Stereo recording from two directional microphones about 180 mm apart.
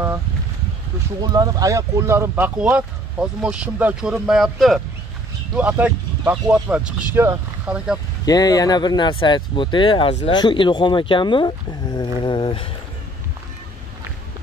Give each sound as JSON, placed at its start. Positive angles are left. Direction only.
{"t": 1.2, "sound": "speech", "side_deg": -20}
{"t": 8.3, "sound": "speech", "side_deg": 20}